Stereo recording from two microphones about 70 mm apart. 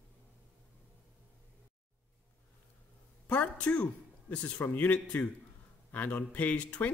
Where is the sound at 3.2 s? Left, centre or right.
Centre.